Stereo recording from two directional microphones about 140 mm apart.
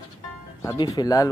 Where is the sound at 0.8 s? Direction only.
30° left (ahead or behind).